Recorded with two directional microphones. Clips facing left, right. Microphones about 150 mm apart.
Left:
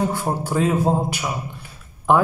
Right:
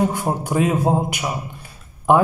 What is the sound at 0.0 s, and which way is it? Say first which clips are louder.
A man's voice: right 2 dB; 15° right (ahead or behind).